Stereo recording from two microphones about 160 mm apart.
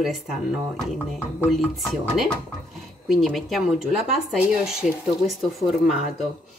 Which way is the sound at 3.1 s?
Centre (ahead or behind).